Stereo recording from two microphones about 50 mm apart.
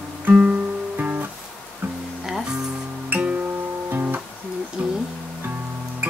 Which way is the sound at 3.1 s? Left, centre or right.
Right.